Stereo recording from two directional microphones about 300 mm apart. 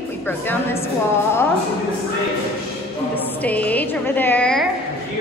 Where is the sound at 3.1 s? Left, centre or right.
Centre.